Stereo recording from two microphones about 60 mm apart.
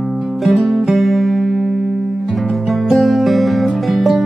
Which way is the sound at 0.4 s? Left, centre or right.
Centre.